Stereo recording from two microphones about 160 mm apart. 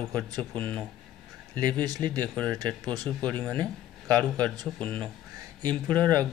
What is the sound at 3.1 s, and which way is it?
Speech, 10° left (ahead or behind).